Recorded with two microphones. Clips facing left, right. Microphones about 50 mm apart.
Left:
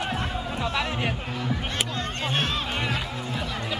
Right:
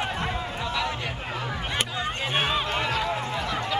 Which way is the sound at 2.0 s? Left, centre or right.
Centre.